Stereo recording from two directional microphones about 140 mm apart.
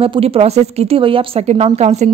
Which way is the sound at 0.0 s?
45° right (ahead or behind).